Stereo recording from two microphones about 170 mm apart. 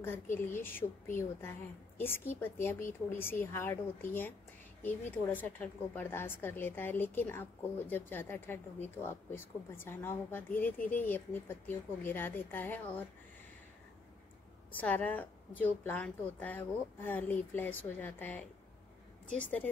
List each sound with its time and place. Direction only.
0.0 s a woman's voice: 15° left (ahead or behind)
14.8 s a woman's voice: 10° left (ahead or behind)